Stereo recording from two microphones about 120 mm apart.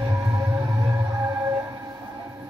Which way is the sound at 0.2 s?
20° right (ahead or behind).